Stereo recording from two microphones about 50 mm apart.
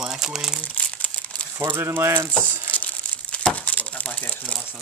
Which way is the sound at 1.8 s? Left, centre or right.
Right.